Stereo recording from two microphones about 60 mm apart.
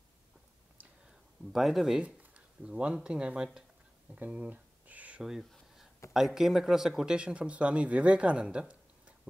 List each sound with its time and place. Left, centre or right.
1.5 s speech: centre
2.0 s speech: centre
4.1 s a sound: right
5.2 s speech: centre
7.2 s speech: centre